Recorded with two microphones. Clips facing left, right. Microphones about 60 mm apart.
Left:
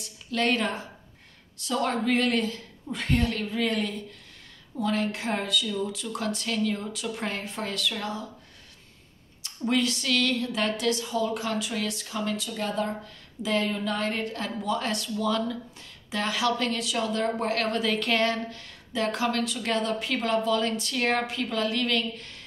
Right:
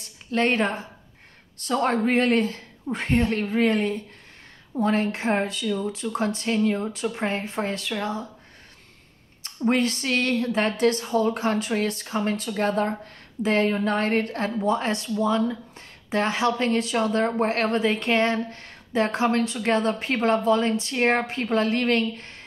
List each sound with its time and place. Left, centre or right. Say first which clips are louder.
0.0 s a woman's voice: right 4 dB; right
9.4 s speech: right 4 dB; right